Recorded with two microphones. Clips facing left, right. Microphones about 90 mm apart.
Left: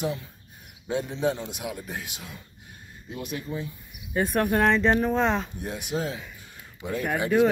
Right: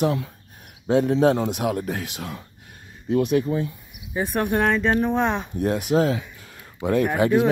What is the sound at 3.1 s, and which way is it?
Speech, 60° right (ahead or behind).